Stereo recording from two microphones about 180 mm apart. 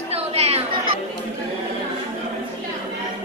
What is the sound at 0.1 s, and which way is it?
Chatter, 35° right (ahead or behind).